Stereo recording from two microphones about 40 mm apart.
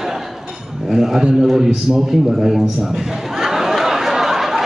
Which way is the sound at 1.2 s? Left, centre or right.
Centre.